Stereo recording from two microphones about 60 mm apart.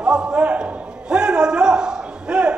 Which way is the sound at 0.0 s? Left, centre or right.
Centre.